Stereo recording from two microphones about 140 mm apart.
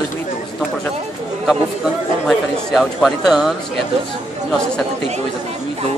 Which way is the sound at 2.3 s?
Centre (ahead or behind).